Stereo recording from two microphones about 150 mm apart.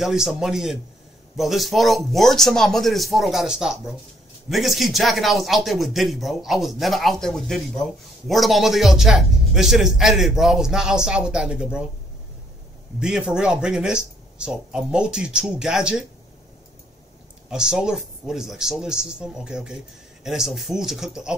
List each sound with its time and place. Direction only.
0.0 s a man's voice: 5° right (ahead or behind)
13.0 s a man's voice: 5° right (ahead or behind)
17.5 s a man's voice: 5° right (ahead or behind)